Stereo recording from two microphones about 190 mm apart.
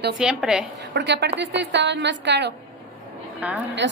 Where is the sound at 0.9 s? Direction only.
65° right (ahead or behind).